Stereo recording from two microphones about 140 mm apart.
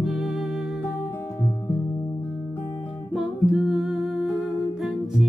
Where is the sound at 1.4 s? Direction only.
20° left (ahead or behind).